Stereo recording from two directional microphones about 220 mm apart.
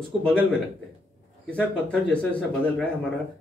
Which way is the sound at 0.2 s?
5° left (ahead or behind).